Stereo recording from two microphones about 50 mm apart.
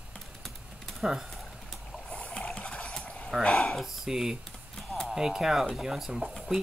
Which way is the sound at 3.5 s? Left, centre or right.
Centre.